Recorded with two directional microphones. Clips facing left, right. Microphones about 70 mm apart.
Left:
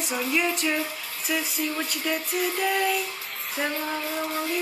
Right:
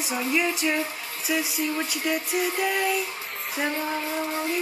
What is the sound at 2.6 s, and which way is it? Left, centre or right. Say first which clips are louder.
Female singing: left 3 dB; centre.